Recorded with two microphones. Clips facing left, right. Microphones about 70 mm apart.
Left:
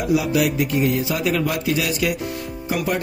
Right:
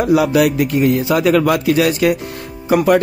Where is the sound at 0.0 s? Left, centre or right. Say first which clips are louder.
Right 6 dB; right.